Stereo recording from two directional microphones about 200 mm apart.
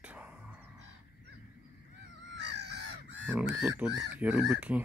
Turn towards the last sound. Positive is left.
turn(degrees=-5)  # may be behind; listen again after turning